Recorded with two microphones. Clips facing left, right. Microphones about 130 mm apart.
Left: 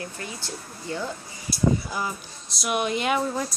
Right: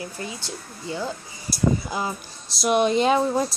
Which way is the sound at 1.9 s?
30° right (ahead or behind).